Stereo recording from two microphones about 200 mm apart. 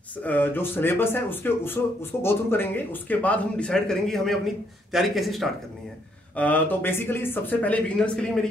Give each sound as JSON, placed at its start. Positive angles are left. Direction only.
{"t": 0.2, "sound": "speech", "side_deg": 10}